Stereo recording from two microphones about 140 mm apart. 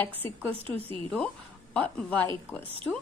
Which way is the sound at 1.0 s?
10° left (ahead or behind).